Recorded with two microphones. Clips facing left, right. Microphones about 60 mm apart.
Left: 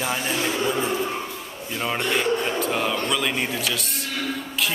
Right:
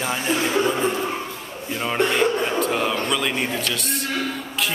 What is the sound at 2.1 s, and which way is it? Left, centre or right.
A man's voice, centre.